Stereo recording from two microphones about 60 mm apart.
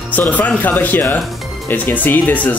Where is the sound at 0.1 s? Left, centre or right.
Left.